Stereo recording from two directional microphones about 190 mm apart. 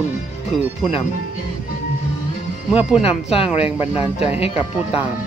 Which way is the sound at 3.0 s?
30° left (ahead or behind).